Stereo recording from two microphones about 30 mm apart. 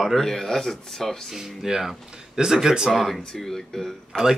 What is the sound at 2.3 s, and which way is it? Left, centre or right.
Speech, centre.